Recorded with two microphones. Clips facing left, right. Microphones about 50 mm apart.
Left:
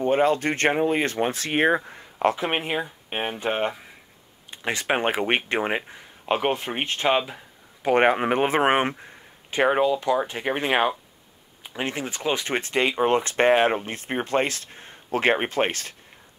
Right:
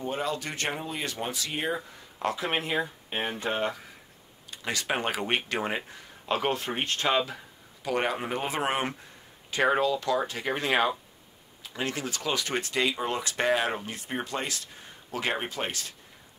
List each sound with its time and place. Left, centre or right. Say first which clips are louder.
0.0 s speech: left 11 dB; left
1.9 s speech: left 8 dB; left
7.8 s speech: left 9 dB; left
9.5 s speech: left 4 dB; left